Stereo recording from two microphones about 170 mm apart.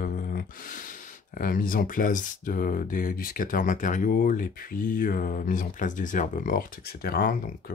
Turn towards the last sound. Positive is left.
turn(degrees=60)  # may be behind; listen again after turning